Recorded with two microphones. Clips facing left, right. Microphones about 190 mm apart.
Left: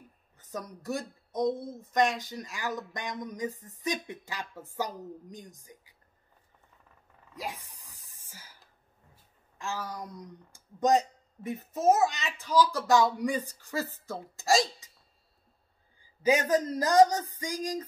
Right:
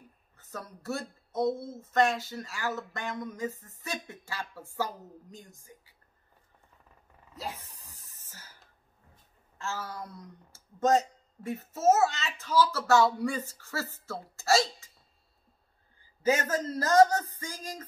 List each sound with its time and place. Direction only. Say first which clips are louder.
0.4 s speech: left 3 dB; 15° left (ahead or behind)
7.3 s a sound: left 1 dB; 10° left (ahead or behind)
9.1 s speech: even; 15° left (ahead or behind)
16.0 s speech: left 2 dB; 15° left (ahead or behind)